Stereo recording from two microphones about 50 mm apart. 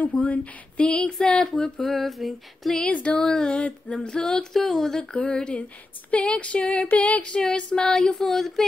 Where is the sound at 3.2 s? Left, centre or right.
Centre.